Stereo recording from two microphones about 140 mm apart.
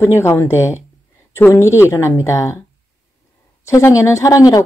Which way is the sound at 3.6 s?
20° left (ahead or behind).